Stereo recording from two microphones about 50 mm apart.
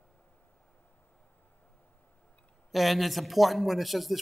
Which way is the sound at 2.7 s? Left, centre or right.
Centre.